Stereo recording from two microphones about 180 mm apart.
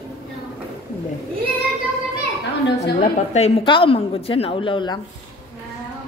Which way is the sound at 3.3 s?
35° left (ahead or behind).